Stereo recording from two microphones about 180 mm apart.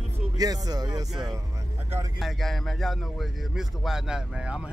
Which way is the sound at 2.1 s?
Centre (ahead or behind).